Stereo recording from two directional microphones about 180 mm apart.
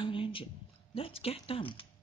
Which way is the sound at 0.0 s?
30° left (ahead or behind).